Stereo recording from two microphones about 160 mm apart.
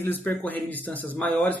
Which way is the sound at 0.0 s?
10° left (ahead or behind).